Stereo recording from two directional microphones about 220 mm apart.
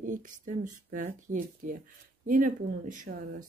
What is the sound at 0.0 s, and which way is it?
Speech, 35° right (ahead or behind).